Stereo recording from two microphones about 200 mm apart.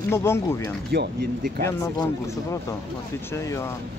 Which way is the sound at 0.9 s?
50° right (ahead or behind).